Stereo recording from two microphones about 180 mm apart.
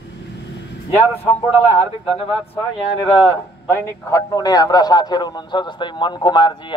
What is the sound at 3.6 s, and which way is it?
A man's voice, 15° left (ahead or behind).